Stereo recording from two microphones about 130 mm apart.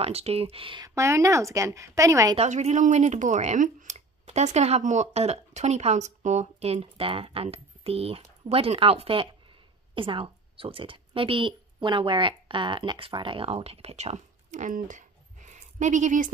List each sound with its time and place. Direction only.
0.0 s speech: 50° right (ahead or behind)
0.8 s speech: 25° right (ahead or behind)
2.3 s speech: 60° right (ahead or behind); by 16.3 s 75° right (ahead or behind)